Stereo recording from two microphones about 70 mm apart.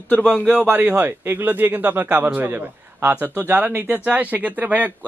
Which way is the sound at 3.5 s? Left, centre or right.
Right.